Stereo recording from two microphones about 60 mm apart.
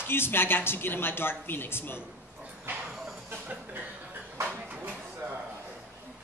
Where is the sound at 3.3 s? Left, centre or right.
Right.